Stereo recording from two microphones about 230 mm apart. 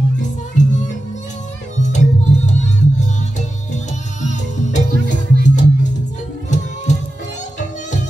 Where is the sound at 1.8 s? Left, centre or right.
Left.